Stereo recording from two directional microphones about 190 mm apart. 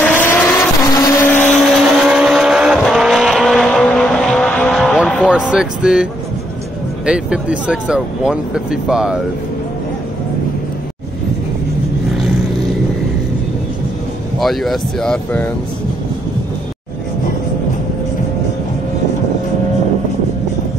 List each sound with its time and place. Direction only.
0.0 s vehicle: 10° left (ahead or behind)
5.0 s speech: 5° right (ahead or behind)
7.1 s speech: 5° right (ahead or behind)
14.4 s speech: centre (ahead or behind)